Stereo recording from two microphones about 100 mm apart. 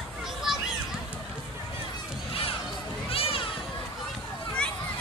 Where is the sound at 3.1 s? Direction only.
65° left (ahead or behind).